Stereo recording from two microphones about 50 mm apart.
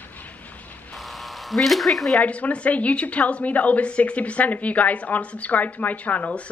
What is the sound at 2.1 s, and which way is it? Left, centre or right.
A woman's voice, left.